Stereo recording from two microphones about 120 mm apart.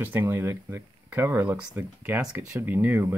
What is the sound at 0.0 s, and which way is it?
Speech, 20° right (ahead or behind).